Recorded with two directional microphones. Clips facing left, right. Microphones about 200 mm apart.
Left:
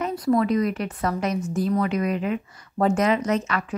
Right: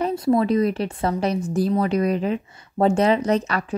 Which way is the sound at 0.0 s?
25° right (ahead or behind).